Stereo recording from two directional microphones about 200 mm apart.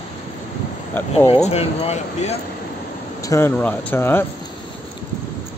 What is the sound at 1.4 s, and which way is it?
Speech, 35° left (ahead or behind).